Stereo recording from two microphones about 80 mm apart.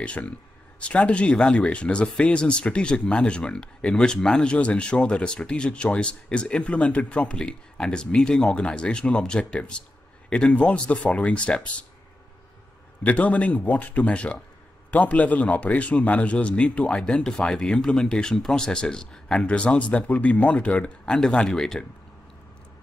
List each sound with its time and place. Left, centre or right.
0.0 s speech: centre
13.0 s speech: centre